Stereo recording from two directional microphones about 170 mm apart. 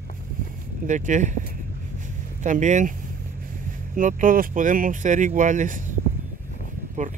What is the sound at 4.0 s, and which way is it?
Speech, 50° right (ahead or behind).